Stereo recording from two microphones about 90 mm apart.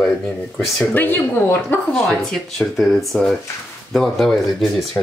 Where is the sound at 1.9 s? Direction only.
5° left (ahead or behind).